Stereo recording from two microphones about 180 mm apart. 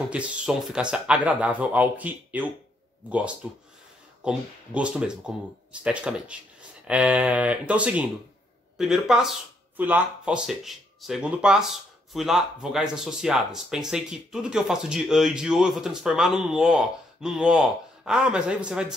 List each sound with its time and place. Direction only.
0.1 s speech: 5° right (ahead or behind)